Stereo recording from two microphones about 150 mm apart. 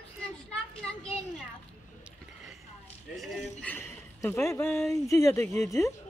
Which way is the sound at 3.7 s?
15° left (ahead or behind).